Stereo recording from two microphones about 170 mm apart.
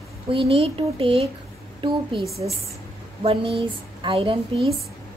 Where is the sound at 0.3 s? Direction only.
35° right (ahead or behind).